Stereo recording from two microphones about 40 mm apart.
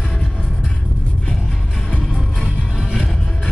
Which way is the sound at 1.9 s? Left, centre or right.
Centre.